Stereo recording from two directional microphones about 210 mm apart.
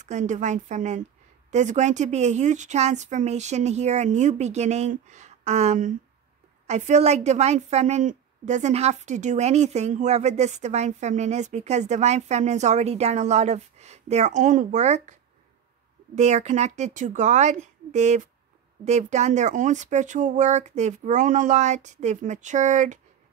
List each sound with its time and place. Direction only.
0.0 s a woman's voice: 35° right (ahead or behind)
16.2 s a woman's voice: 35° right (ahead or behind)